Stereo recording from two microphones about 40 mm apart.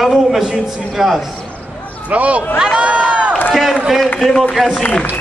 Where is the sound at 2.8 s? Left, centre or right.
Right.